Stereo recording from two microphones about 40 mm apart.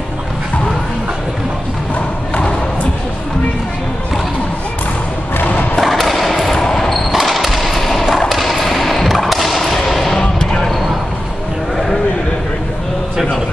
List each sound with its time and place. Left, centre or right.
5.8 s thump: centre
6.5 s basketball bounce: centre
7.1 s a sound: centre
9.8 s vehicle: centre
10.2 s vehicle: centre